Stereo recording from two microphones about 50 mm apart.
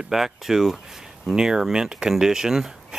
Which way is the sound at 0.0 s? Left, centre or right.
Centre.